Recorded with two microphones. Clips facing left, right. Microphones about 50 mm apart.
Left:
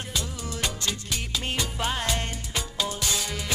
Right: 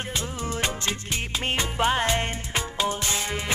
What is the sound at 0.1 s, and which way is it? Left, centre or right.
Music, right.